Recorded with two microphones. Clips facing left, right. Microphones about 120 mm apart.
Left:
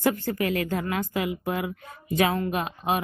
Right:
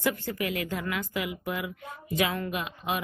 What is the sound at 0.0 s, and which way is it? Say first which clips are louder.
Speech: left 5 dB; 40° left (ahead or behind).